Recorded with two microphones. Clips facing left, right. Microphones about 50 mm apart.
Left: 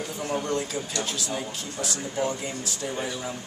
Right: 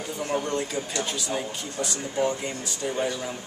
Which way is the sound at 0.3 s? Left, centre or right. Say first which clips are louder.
Right 1 dB; centre.